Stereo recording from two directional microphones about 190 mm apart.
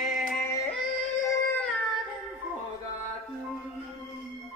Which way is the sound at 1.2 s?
15° left (ahead or behind).